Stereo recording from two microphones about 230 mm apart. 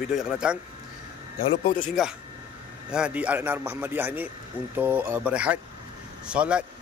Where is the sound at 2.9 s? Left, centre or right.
Centre.